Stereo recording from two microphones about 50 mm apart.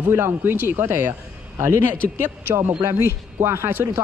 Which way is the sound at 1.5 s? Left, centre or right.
Right.